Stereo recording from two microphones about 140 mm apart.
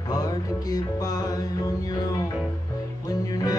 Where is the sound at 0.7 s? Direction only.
25° left (ahead or behind).